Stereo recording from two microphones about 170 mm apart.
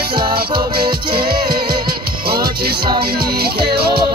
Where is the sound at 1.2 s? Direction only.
60° right (ahead or behind).